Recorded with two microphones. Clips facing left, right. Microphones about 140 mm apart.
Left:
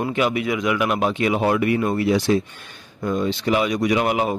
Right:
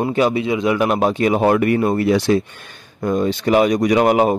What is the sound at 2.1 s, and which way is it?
Speech, 65° right (ahead or behind).